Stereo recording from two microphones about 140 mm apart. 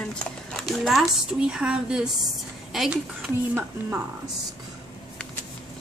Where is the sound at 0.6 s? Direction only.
Centre (ahead or behind).